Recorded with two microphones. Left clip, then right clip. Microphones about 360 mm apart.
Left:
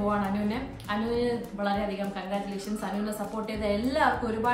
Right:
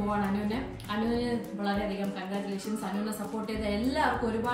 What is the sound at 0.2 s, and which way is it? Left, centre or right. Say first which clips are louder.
A woman's voice: left 1 dB; centre.